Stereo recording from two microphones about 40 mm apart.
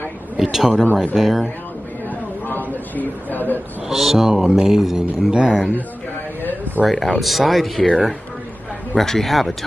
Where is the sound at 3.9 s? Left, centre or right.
Centre.